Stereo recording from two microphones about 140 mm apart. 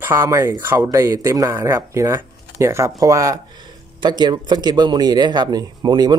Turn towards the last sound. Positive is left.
turn(degrees=-30)  # may be behind; listen again after turning